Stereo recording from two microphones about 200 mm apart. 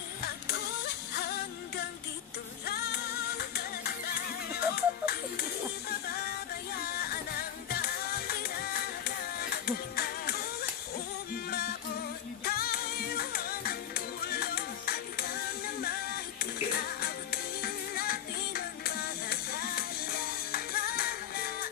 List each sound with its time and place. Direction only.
0.5 s music: 55° left (ahead or behind)
12.4 s music: 50° left (ahead or behind)